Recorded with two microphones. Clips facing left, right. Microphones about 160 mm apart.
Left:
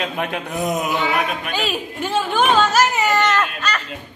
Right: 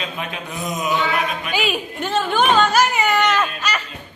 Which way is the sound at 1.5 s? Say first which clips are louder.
Right 1 dB; centre (ahead or behind).